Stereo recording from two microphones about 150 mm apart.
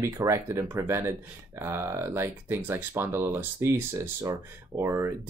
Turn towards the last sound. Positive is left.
turn(degrees=-20)  # may be behind; listen again after turning